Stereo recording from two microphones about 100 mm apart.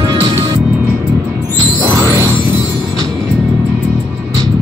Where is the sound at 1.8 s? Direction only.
25° right (ahead or behind).